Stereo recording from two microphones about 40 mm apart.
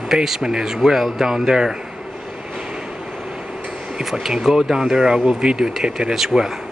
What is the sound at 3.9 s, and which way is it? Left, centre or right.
Speech, centre.